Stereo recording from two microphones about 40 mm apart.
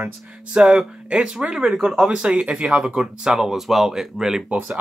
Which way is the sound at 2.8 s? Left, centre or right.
Centre.